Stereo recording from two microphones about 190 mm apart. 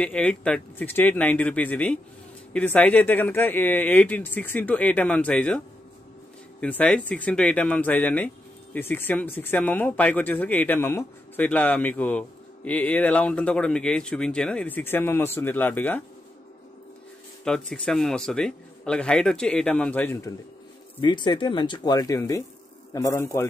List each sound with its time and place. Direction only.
0.0 s speech: 5° left (ahead or behind)
6.6 s speech: 5° left (ahead or behind)
17.5 s a man's voice: 5° left (ahead or behind)
21.0 s speech: 25° left (ahead or behind)